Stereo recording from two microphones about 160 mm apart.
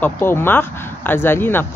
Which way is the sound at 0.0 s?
15° left (ahead or behind).